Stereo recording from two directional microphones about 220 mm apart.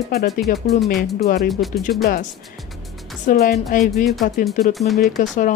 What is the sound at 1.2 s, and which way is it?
Speech, 45° left (ahead or behind).